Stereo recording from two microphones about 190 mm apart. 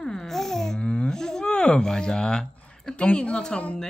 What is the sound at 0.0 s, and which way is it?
Speech, 5° left (ahead or behind).